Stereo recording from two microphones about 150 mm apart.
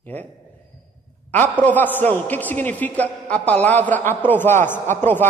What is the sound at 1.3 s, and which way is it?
A man's voice, 10° left (ahead or behind).